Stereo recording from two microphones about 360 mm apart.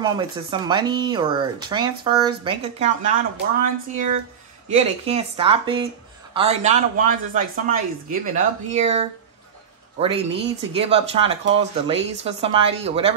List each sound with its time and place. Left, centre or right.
0.0 s speech: centre
5.0 s speech: centre